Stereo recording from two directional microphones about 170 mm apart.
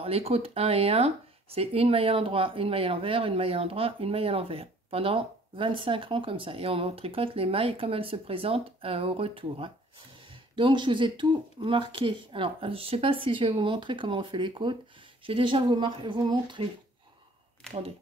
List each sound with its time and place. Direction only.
0.0 s speech: 35° right (ahead or behind)